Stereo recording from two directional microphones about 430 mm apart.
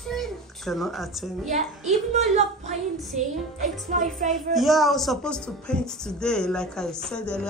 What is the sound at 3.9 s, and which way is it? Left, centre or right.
Speech, centre.